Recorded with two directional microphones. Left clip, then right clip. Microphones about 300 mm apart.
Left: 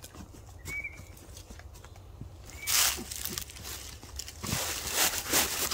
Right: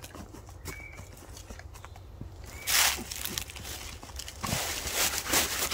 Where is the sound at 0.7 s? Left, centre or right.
Centre.